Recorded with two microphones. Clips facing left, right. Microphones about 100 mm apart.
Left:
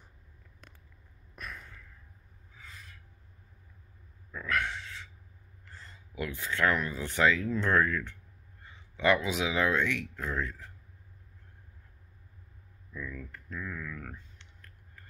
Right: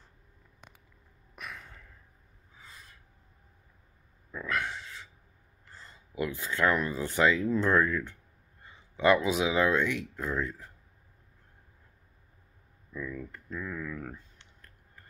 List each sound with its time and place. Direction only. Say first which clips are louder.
1.3 s a sound: even; 5° right (ahead or behind)
4.5 s speech: left 1 dB; 15° right (ahead or behind)
5.9 s speech: right 4 dB; 25° right (ahead or behind)
8.9 s speech: right 3 dB; 25° right (ahead or behind)
12.9 s speech: right 3 dB; 10° right (ahead or behind)